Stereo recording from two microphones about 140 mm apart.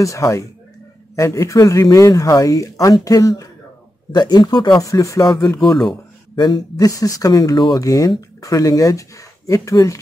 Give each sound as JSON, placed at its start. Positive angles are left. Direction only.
{"t": 0.0, "sound": "speech", "side_deg": 20}
{"t": 5.6, "sound": "speech", "side_deg": 0}
{"t": 6.3, "sound": "speech", "side_deg": 30}